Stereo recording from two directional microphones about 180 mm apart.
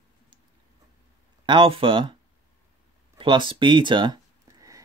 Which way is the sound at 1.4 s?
30° right (ahead or behind).